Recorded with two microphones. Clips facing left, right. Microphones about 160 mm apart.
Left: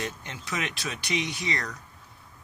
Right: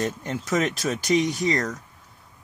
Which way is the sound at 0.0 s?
40° right (ahead or behind).